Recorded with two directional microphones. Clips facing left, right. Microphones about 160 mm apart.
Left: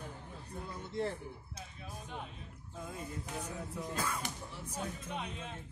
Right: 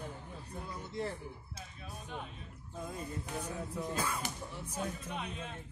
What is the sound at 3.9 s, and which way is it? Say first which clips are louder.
Whip: even; 10° right (ahead or behind).